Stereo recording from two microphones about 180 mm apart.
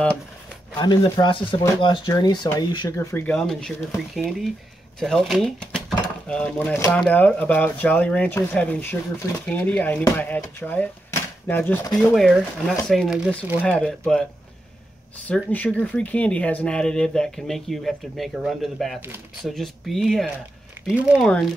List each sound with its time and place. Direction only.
0.7 s speech: 20° left (ahead or behind)
12.0 s speech: centre (ahead or behind)
15.2 s speech: 10° left (ahead or behind)